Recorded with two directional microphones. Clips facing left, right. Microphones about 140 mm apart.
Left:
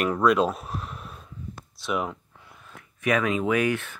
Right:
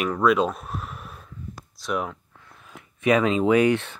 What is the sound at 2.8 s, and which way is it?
Speech, 25° right (ahead or behind).